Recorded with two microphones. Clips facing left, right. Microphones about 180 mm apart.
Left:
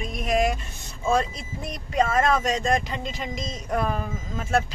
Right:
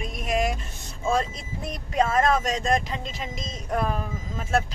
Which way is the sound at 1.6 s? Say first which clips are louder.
Even; centre (ahead or behind).